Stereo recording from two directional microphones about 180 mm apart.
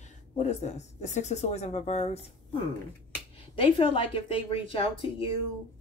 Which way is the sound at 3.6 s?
30° left (ahead or behind).